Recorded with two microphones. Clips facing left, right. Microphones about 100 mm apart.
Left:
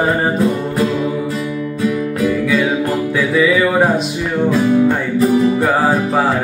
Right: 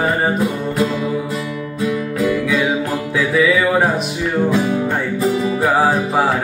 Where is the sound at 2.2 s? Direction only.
Centre (ahead or behind).